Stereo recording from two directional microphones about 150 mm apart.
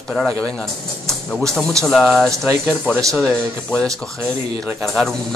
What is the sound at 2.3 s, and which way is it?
Speech, 20° right (ahead or behind).